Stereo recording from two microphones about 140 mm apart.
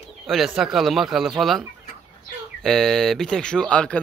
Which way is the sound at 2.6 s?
5° left (ahead or behind).